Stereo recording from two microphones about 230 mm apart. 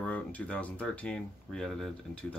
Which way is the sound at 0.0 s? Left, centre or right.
Centre.